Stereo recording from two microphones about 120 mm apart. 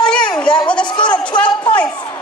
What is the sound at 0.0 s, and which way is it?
Bleat, 10° left (ahead or behind).